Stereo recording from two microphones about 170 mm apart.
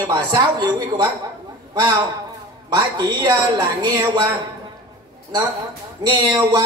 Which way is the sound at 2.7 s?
25° right (ahead or behind).